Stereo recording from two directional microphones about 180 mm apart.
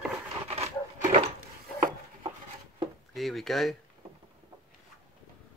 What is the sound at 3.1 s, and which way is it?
Speech, centre (ahead or behind).